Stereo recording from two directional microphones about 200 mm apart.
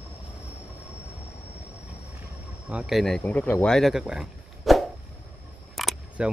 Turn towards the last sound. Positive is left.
turn(degrees=0)  # may be behind; listen again after turning